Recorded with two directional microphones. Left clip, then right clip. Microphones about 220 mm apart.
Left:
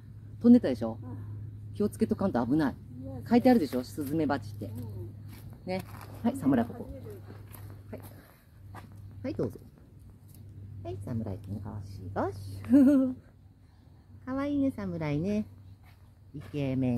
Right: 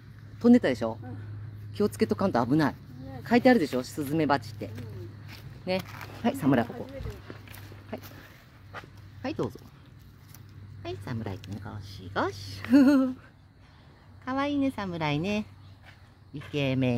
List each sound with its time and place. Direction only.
0.4 s speech: 20° right (ahead or behind)
2.0 s speech: 20° right (ahead or behind)
5.7 s a woman's voice: 35° right (ahead or behind)
9.2 s speech: 35° right (ahead or behind)
10.8 s speech: 35° right (ahead or behind)
11.6 s speech: 55° right (ahead or behind)
12.2 s a woman's voice: 45° right (ahead or behind)
14.2 s a woman's voice: 40° right (ahead or behind)
16.5 s a woman's voice: 40° right (ahead or behind)